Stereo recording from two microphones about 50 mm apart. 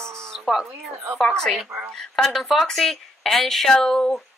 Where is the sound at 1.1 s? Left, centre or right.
Centre.